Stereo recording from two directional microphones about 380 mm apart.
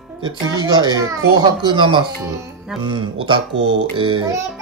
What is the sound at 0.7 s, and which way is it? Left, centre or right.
Speech, centre.